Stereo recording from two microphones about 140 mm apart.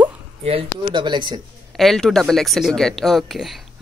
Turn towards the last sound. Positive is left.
turn(degrees=0)  # may be behind; listen again after turning